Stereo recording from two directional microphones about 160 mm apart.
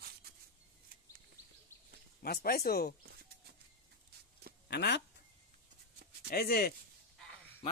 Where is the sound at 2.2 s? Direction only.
75° left (ahead or behind).